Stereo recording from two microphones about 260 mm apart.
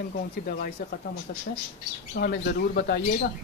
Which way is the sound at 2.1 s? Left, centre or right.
Left.